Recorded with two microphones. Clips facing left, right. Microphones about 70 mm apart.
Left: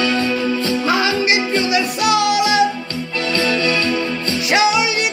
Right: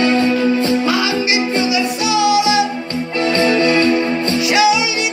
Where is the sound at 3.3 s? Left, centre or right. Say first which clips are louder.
Right 4 dB; right.